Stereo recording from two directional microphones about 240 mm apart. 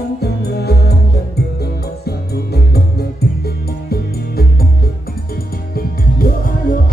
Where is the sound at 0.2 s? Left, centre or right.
Left.